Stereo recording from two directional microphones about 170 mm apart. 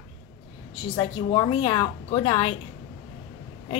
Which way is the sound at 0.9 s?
25° left (ahead or behind).